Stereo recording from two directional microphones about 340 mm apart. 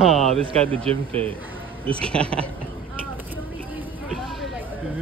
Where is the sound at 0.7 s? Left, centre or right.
Centre.